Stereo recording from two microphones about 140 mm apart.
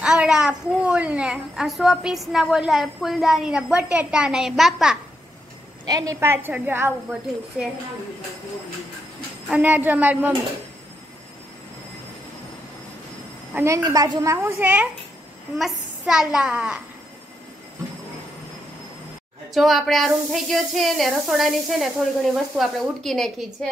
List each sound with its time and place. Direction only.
0.0 s a woman's voice: 5° right (ahead or behind)
5.9 s a woman's voice: 25° right (ahead or behind); by 7.7 s 5° right (ahead or behind)
9.5 s a woman's voice: 10° right (ahead or behind)
13.6 s a woman's voice: 25° right (ahead or behind); by 16.8 s 5° right (ahead or behind)
19.5 s a woman's voice: centre (ahead or behind)